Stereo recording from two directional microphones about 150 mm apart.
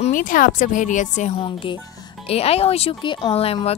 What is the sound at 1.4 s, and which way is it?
Speech, 35° left (ahead or behind).